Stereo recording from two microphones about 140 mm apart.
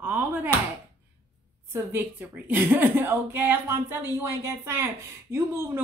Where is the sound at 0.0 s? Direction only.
10° right (ahead or behind).